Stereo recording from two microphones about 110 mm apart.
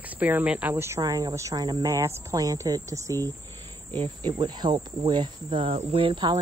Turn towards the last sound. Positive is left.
turn(degrees=-50)  # may be behind; listen again after turning